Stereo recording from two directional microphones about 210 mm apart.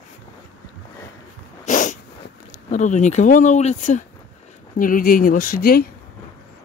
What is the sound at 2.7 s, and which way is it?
Speech, 35° left (ahead or behind).